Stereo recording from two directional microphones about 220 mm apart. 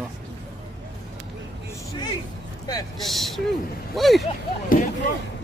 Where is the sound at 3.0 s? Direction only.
Centre (ahead or behind).